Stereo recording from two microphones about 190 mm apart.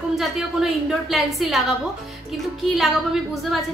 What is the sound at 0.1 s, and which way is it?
A woman's voice, centre (ahead or behind).